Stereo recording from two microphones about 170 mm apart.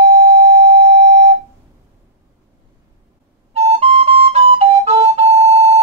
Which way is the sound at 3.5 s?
35° right (ahead or behind).